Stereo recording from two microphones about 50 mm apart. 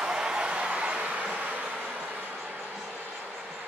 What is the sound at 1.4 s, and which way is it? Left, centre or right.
Train, right.